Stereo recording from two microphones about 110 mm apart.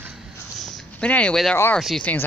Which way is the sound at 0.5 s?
5° left (ahead or behind).